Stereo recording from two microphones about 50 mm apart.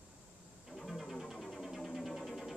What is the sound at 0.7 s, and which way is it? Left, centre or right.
Music, centre.